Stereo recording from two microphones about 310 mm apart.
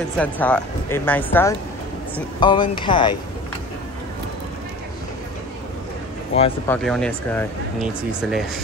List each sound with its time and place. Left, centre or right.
0.2 s speech: centre
6.3 s speech: centre
6.7 s speech: centre